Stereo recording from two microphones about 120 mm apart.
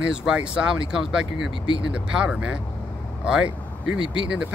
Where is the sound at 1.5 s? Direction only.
45° left (ahead or behind).